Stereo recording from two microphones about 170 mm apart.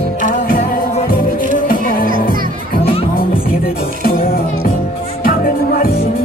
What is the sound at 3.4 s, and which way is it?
Music, 60° left (ahead or behind).